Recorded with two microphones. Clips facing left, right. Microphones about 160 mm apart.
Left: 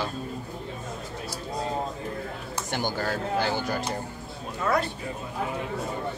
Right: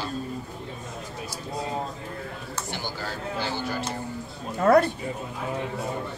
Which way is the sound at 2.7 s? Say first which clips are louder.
Left 7 dB; 50° left (ahead or behind).